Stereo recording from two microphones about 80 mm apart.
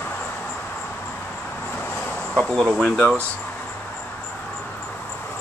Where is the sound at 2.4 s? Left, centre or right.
Centre.